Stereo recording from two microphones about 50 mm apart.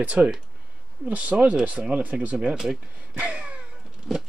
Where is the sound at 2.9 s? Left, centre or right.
Right.